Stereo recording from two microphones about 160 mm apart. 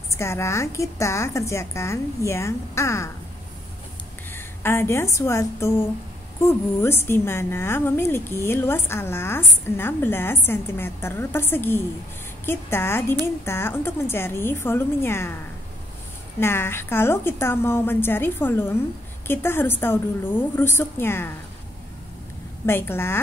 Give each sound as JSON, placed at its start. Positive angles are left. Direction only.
{"t": 0.1, "sound": "a woman's voice", "side_deg": 15}
{"t": 4.3, "sound": "a woman's voice", "side_deg": 15}
{"t": 16.3, "sound": "a woman's voice", "side_deg": 15}
{"t": 22.7, "sound": "a woman's voice", "side_deg": 15}